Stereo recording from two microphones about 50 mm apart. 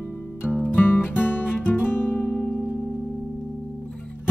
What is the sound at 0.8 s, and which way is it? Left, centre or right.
Music, left.